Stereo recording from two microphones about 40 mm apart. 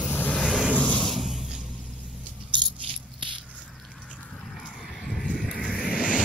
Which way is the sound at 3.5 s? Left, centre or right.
Right.